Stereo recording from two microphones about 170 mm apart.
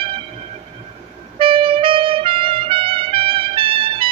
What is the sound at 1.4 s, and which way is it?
Music, 30° right (ahead or behind).